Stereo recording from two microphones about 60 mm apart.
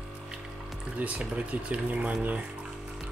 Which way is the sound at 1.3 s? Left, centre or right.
Right.